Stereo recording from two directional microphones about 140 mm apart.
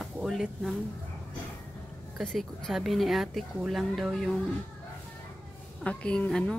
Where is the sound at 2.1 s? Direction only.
Centre (ahead or behind).